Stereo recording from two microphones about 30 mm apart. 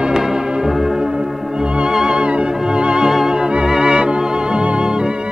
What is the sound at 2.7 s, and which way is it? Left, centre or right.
Music, right.